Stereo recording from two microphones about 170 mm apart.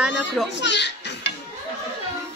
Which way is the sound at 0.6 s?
90° left.